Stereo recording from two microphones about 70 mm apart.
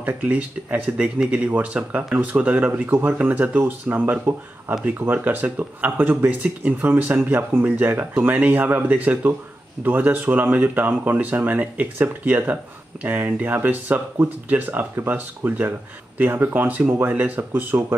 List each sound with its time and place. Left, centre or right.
0.0 s speech: right
2.7 s speech: right
3.2 s speech: right